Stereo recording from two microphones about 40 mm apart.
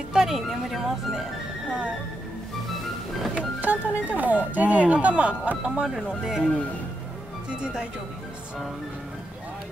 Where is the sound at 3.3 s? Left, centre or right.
Right.